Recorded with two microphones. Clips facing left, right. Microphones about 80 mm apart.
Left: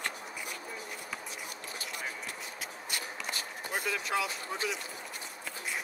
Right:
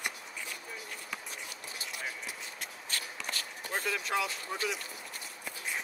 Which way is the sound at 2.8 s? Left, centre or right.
Centre.